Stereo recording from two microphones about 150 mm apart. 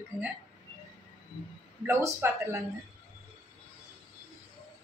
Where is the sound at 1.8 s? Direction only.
15° right (ahead or behind).